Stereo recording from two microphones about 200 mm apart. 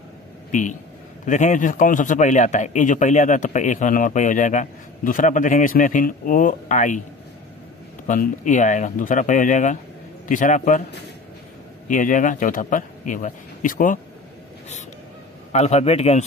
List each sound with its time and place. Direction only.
0.5 s a man's voice: 40° left (ahead or behind)
8.1 s a man's voice: 40° left (ahead or behind)
11.9 s a man's voice: 40° left (ahead or behind)
15.5 s a man's voice: 35° left (ahead or behind)